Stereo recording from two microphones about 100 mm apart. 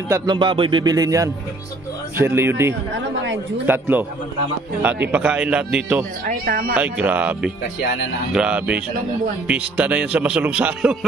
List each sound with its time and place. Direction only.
0.3 s a man's voice: 50° right (ahead or behind); by 1.3 s 35° right (ahead or behind)
2.1 s a man's voice: 25° right (ahead or behind); by 11.1 s 5° right (ahead or behind)